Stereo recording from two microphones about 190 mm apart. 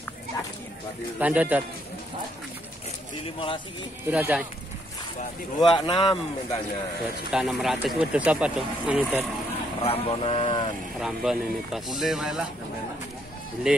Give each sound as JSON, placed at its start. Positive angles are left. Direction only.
{"t": 1.2, "sound": "a man's voice", "side_deg": -5}
{"t": 3.3, "sound": "speech", "side_deg": 25}
{"t": 4.1, "sound": "a man's voice", "side_deg": -10}
{"t": 5.6, "sound": "speech", "side_deg": 25}
{"t": 7.2, "sound": "speech", "side_deg": -5}
{"t": 9.8, "sound": "speech", "side_deg": 30}
{"t": 11.0, "sound": "speech", "side_deg": -5}
{"t": 13.7, "sound": "speech", "side_deg": -5}